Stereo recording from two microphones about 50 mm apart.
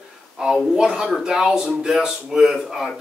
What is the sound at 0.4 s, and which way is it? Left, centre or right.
Speech, centre.